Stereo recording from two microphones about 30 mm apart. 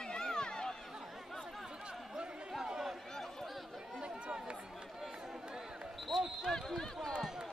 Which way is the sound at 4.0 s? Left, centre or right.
Right.